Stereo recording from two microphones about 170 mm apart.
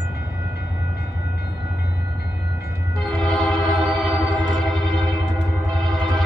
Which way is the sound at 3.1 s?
5° left (ahead or behind).